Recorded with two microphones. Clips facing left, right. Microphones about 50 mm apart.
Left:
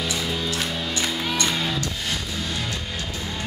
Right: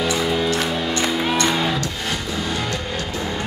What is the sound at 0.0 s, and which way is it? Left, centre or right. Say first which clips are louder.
Music: right 7 dB; centre.